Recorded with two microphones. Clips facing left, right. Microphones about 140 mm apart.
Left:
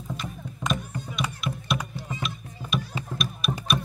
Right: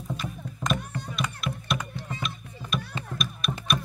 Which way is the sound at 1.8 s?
10° left (ahead or behind).